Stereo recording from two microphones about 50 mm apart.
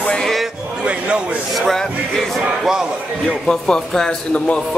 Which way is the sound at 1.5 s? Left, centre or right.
Centre.